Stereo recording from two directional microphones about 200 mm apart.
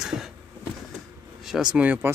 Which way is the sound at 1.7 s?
5° right (ahead or behind).